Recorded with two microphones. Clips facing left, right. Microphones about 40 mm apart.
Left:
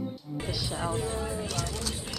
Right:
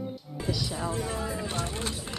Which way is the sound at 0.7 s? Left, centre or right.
Left.